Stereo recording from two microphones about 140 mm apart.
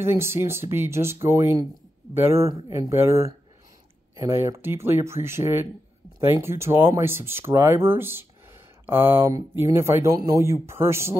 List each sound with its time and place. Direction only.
0.0 s speech: 20° right (ahead or behind)